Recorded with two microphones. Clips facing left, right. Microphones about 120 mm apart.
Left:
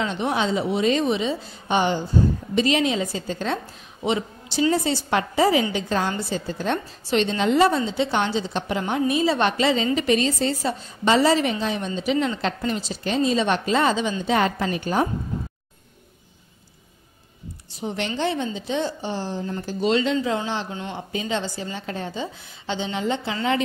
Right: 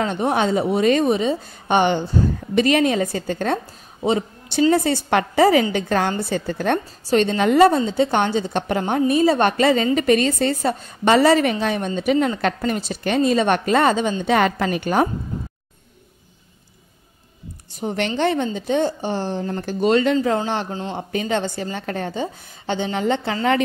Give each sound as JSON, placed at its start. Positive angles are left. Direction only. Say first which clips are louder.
{"t": 0.0, "sound": "a woman's voice", "louder": "right 4 dB", "side_deg": -50}
{"t": 14.2, "sound": "a woman's voice", "louder": "right 3 dB", "side_deg": -65}
{"t": 17.7, "sound": "a woman's voice", "louder": "right 4 dB", "side_deg": -55}